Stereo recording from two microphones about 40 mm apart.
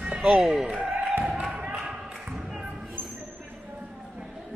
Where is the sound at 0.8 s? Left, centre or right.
Right.